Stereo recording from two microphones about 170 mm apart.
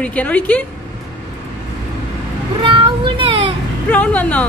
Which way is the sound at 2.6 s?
30° right (ahead or behind).